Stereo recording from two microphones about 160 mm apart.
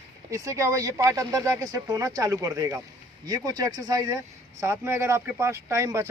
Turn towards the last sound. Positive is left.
turn(degrees=-20)  # may be behind; listen again after turning